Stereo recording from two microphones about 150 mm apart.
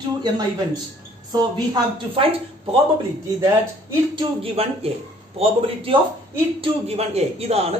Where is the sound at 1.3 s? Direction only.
30° right (ahead or behind).